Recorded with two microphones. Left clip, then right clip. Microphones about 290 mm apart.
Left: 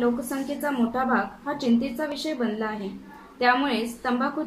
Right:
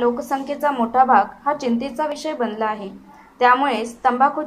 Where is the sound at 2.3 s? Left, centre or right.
Centre.